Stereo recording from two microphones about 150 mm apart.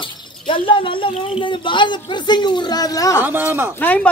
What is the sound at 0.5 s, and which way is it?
Speech, 35° left (ahead or behind).